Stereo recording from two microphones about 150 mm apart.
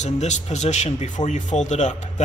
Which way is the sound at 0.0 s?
50° left (ahead or behind).